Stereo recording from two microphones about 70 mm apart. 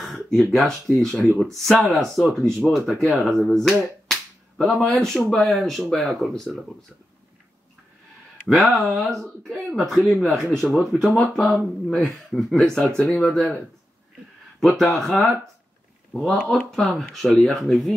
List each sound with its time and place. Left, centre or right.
0.0 s speech: centre
4.1 s a sound: centre
5.7 s speech: centre
8.5 s speech: centre
14.6 s speech: centre
16.1 s speech: centre
16.4 s speech: centre